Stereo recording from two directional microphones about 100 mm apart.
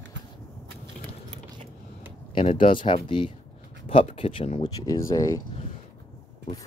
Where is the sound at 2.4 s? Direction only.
60° left (ahead or behind).